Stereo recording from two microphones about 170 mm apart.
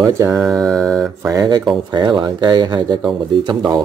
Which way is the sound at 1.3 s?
20° right (ahead or behind).